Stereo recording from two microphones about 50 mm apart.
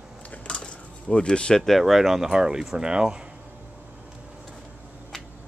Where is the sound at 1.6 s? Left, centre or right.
Centre.